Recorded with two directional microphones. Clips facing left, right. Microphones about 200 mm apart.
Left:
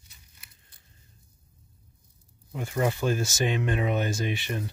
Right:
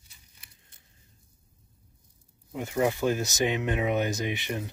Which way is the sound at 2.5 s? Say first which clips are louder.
Right 1 dB; 15° right (ahead or behind).